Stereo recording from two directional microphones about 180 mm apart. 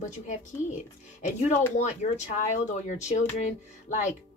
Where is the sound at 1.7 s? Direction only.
40° left (ahead or behind).